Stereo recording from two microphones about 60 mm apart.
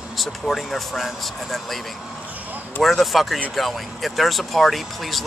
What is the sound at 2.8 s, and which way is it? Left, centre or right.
Speech, centre.